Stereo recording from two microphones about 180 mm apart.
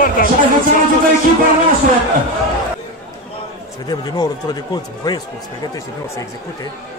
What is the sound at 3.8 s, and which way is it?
A man's voice, 20° left (ahead or behind).